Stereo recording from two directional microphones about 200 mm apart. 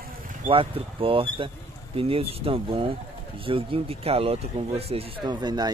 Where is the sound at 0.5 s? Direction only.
25° right (ahead or behind).